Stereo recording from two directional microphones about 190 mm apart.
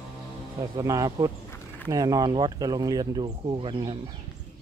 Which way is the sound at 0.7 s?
20° right (ahead or behind).